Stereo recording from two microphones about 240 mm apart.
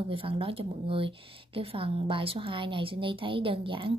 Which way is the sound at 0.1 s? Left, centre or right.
Right.